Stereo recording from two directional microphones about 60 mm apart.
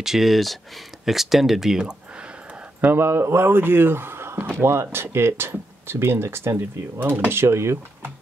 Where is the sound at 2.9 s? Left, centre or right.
Right.